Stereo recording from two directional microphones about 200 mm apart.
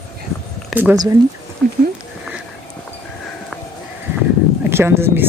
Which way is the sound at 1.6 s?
5° left (ahead or behind).